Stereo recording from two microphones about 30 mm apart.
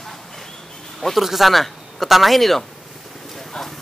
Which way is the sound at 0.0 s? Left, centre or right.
Centre.